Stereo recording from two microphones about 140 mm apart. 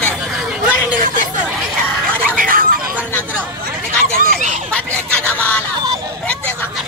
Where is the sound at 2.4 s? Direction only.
90° right.